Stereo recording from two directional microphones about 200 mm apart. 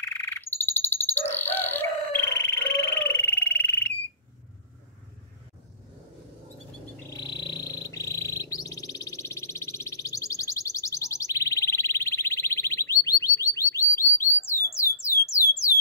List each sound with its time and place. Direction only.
0.0 s bird: 10° left (ahead or behind)
7.2 s bird: 20° left (ahead or behind)
14.5 s a sound: 15° left (ahead or behind)